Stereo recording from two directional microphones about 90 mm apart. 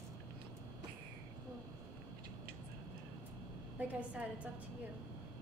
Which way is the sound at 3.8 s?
15° right (ahead or behind).